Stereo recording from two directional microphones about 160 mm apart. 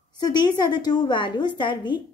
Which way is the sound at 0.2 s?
25° left (ahead or behind).